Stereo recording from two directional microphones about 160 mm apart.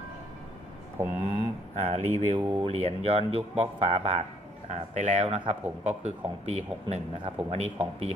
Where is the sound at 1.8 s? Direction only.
45° right (ahead or behind).